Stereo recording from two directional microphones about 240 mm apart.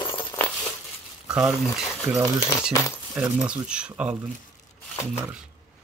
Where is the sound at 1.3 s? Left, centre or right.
Centre.